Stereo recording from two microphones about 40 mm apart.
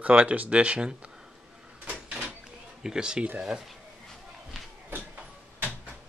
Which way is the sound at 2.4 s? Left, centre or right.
Centre.